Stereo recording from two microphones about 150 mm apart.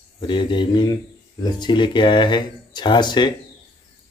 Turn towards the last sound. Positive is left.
turn(degrees=30)  # may be behind; listen again after turning